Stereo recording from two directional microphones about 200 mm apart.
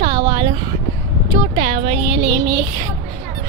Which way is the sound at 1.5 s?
30° right (ahead or behind).